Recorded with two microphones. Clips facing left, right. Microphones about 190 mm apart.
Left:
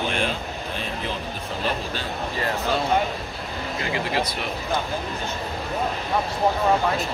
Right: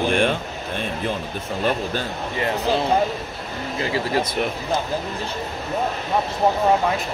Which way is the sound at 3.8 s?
30° right (ahead or behind).